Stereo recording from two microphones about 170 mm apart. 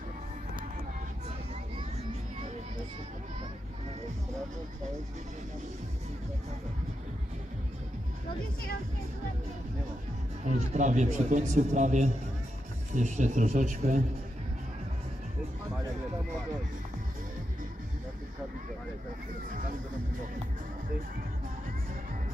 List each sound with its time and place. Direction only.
10.4 s a man's voice: 45° right (ahead or behind)